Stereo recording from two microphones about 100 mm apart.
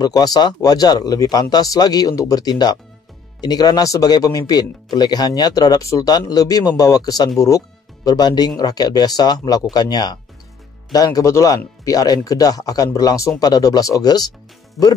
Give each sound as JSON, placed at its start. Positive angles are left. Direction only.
{"t": 0.0, "sound": "speech", "side_deg": 40}
{"t": 14.8, "sound": "speech", "side_deg": 0}